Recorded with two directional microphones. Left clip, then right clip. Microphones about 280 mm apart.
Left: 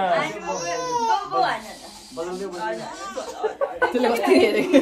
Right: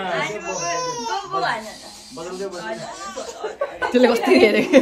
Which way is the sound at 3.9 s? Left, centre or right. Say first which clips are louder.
Right 6 dB; right.